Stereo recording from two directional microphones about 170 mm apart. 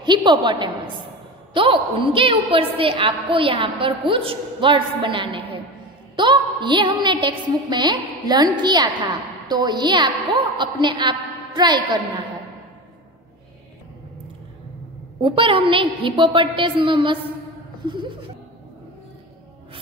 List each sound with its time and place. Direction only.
0.0 s a woman's voice: 25° right (ahead or behind)
15.2 s a woman's voice: 30° right (ahead or behind)